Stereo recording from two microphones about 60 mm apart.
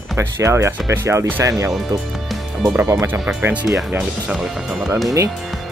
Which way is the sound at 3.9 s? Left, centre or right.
Centre.